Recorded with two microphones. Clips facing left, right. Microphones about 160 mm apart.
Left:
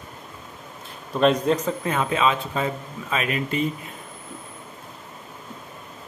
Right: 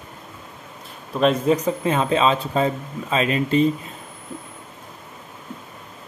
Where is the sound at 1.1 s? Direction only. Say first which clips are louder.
Right 1 dB; 5° right (ahead or behind).